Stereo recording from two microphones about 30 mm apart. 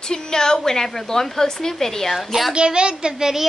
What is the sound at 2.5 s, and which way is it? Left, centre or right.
Speech, right.